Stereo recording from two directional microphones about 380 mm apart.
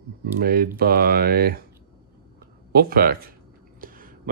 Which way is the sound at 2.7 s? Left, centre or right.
Right.